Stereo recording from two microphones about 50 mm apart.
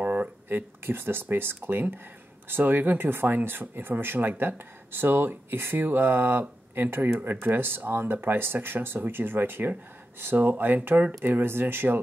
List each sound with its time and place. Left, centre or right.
0.0 s a sound: right
0.5 s speech: right
11.2 s speech: right